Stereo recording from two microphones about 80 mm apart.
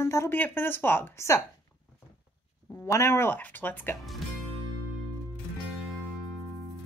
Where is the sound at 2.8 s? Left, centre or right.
Left.